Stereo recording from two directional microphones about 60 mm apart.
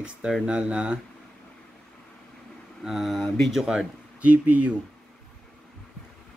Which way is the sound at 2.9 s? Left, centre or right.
Centre.